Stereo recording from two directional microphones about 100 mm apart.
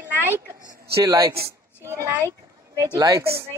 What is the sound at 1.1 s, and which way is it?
Speech, 35° right (ahead or behind).